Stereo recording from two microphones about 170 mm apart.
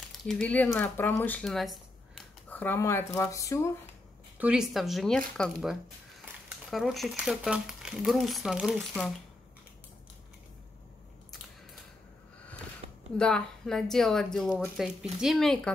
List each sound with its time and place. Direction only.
0.3 s speech: 10° left (ahead or behind)
2.5 s speech: 10° left (ahead or behind)
4.4 s speech: 5° right (ahead or behind)
13.2 s speech: 5° left (ahead or behind)